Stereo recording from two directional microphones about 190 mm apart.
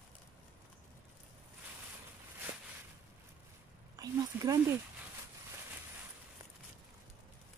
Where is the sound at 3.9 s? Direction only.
20° right (ahead or behind).